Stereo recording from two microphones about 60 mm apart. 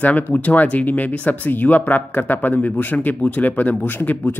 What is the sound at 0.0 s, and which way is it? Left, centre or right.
Speech, left.